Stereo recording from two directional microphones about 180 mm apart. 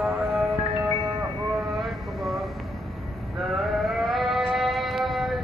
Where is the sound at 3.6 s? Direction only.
Centre (ahead or behind).